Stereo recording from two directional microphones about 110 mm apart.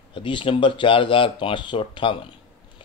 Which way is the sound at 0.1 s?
50° left (ahead or behind).